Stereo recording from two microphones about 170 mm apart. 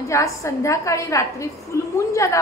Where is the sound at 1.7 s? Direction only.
15° left (ahead or behind).